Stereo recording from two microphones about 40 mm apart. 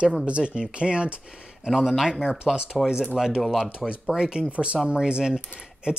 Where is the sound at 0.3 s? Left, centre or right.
Right.